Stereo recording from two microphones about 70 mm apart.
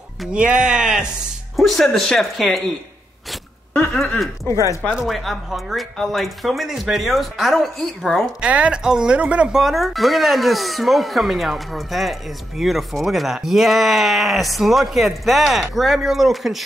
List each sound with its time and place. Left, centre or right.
0.3 s speech: centre
1.6 s speech: centre
5.0 s speech: centre
8.4 s speech: centre
9.6 s speech: centre